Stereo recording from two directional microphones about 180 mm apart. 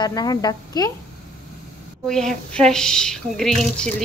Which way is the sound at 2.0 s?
5° left (ahead or behind).